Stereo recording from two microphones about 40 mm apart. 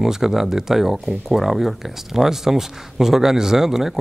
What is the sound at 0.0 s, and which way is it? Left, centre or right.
Speech, centre.